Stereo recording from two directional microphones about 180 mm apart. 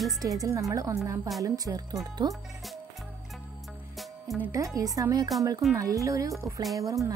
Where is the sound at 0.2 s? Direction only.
20° right (ahead or behind).